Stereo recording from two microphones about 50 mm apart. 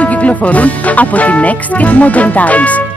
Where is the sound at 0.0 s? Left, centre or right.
Left.